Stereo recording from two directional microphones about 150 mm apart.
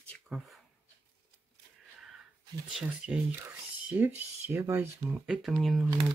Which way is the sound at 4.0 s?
15° right (ahead or behind).